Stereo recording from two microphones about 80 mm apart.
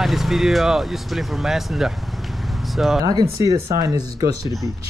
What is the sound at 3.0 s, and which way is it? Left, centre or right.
Speech, right.